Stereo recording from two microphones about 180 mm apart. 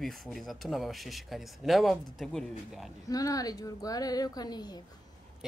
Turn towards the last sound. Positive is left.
turn(degrees=20)  # may be behind; listen again after turning